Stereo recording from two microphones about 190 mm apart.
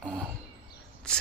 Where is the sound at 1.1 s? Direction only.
5° left (ahead or behind).